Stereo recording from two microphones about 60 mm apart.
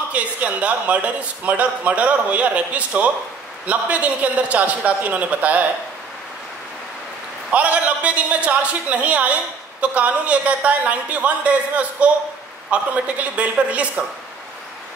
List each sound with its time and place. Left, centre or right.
0.1 s a man's voice: right
7.5 s a man's voice: right